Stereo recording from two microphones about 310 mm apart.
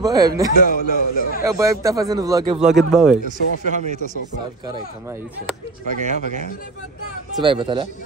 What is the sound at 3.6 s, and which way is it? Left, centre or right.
Speech, right.